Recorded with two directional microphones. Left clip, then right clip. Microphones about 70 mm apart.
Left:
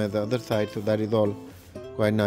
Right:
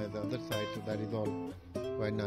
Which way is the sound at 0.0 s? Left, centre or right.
Left.